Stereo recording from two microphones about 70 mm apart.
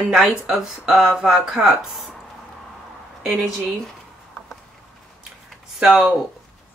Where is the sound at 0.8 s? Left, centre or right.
Centre.